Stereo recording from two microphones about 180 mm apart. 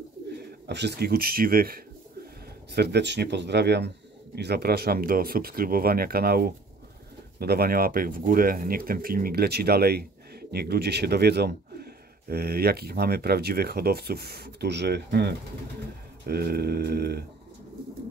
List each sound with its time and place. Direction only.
0.4 s speech: 70° right (ahead or behind)
2.7 s speech: 65° right (ahead or behind)